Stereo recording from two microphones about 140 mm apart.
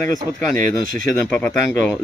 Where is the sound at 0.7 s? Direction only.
30° left (ahead or behind).